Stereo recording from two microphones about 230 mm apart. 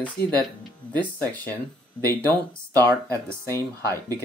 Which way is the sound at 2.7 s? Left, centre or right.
Centre.